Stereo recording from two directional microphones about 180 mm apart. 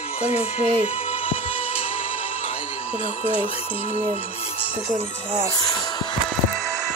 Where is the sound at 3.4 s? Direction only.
30° left (ahead or behind).